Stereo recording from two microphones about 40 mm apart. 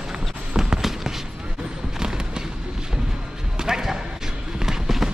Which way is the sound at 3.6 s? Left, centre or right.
Centre.